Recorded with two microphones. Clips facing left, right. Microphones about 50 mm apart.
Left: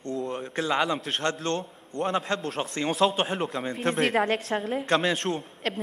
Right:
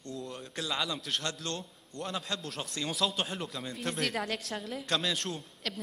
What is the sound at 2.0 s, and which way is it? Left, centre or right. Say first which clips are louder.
Speech: left 10 dB; left.